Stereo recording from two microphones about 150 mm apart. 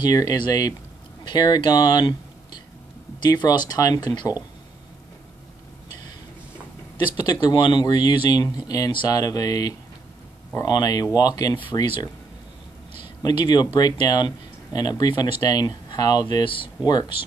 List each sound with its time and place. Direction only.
0.0 s speech: 25° left (ahead or behind)
7.2 s speech: 25° left (ahead or behind)
13.2 s speech: 30° left (ahead or behind)